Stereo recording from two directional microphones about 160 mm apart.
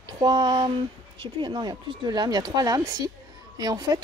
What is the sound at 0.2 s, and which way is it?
Speech, 25° right (ahead or behind).